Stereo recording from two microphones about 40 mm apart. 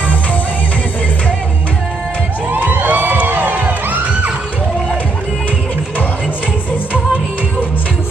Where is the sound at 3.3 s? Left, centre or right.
Right.